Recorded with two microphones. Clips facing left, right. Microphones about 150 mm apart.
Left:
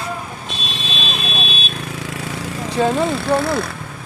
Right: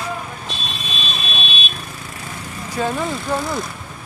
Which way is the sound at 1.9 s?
90° left.